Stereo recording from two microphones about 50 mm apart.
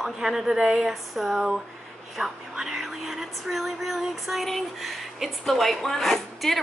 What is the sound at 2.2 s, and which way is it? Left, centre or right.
Speech, right.